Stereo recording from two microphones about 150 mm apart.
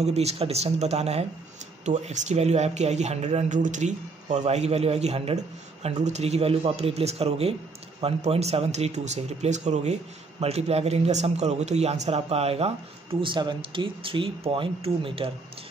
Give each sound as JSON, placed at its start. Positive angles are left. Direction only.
{"t": 0.0, "sound": "speech", "side_deg": -45}